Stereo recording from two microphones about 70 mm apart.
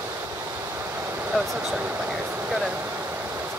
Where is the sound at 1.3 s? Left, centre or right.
Centre.